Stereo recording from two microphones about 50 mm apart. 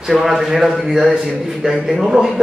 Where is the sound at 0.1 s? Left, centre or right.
Centre.